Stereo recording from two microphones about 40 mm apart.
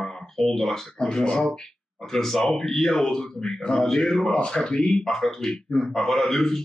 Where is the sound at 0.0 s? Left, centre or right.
Centre.